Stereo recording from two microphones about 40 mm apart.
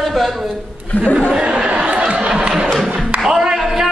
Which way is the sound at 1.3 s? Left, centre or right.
Right.